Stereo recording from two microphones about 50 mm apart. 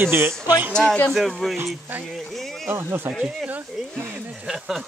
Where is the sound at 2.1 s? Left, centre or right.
Centre.